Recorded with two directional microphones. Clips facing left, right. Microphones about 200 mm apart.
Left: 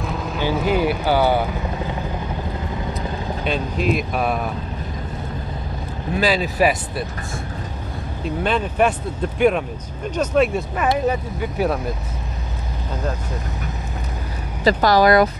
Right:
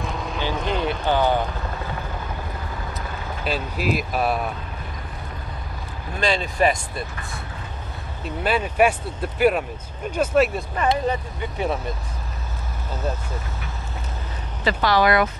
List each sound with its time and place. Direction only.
0.0 s speech: 5° left (ahead or behind)
3.4 s speech: 5° right (ahead or behind)
6.1 s speech: 5° left (ahead or behind)
8.5 s speech: 10° right (ahead or behind)
14.6 s speech: 40° left (ahead or behind)